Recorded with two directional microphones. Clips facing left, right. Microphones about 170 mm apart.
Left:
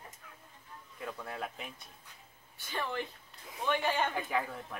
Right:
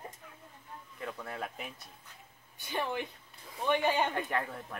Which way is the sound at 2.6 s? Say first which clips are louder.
Right 2 dB; 15° right (ahead or behind).